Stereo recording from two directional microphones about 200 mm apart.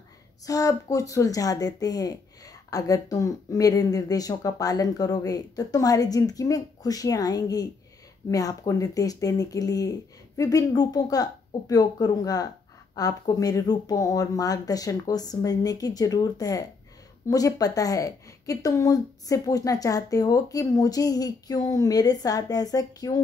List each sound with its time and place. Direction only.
0.5 s speech: 15° left (ahead or behind)